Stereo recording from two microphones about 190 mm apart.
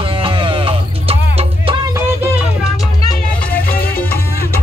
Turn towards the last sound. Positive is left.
turn(degrees=50)  # may be behind; listen again after turning